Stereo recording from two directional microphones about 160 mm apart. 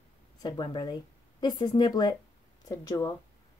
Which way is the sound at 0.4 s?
25° left (ahead or behind).